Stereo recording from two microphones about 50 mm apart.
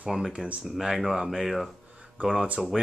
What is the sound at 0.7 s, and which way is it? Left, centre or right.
Speech, centre.